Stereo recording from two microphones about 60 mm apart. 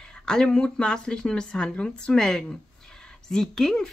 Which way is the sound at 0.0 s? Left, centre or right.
Centre.